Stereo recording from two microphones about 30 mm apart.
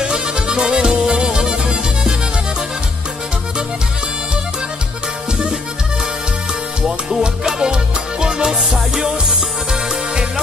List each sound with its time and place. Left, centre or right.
0.0 s music: right
1.2 s music: right
7.1 s music: centre
8.5 s music: centre